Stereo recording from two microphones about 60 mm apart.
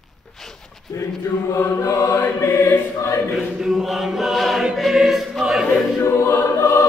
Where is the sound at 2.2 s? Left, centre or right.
Left.